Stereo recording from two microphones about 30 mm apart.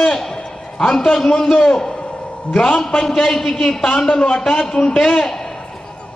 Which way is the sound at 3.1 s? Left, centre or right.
Centre.